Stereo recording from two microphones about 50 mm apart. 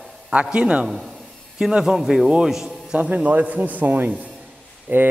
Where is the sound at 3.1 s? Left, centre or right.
Right.